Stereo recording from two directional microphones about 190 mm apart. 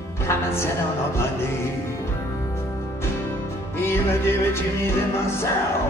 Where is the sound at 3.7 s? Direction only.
15° left (ahead or behind).